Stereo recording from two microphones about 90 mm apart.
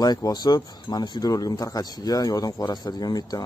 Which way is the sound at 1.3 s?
40° left (ahead or behind).